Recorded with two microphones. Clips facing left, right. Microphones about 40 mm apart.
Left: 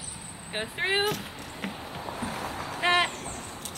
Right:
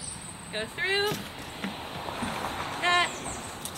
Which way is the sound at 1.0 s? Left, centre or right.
Centre.